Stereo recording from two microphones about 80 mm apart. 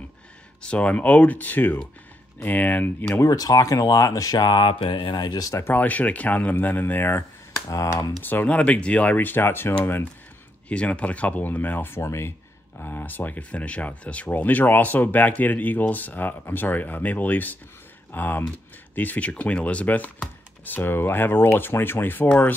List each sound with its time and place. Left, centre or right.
0.6 s speech: centre
3.2 s speech: left
5.5 s speech: left
7.7 s speech: left
8.2 s speech: left
10.7 s speech: centre